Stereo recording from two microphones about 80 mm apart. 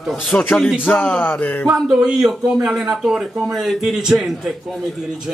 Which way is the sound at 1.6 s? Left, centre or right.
Centre.